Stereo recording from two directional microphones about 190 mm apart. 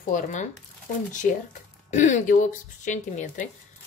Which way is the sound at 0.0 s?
40° left (ahead or behind).